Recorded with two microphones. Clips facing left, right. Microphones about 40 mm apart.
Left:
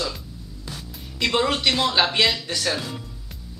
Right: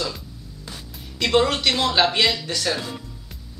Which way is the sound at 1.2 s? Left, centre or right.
Centre.